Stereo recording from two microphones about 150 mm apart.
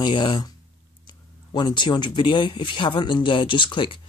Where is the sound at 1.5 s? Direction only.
30° left (ahead or behind).